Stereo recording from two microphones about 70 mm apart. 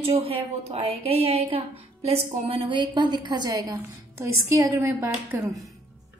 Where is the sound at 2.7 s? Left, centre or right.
Right.